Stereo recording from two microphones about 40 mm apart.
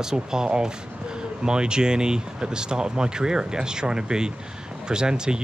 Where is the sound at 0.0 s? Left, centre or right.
Centre.